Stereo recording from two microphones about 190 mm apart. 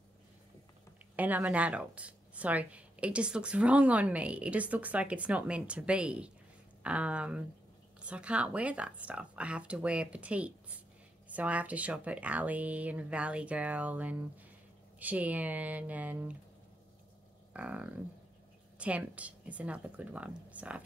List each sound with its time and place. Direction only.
1.1 s a woman's voice: 10° right (ahead or behind)
17.5 s a sound: 5° right (ahead or behind)
18.8 s a woman's voice: 5° right (ahead or behind)